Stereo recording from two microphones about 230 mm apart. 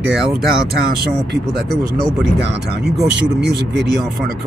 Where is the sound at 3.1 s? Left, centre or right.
Right.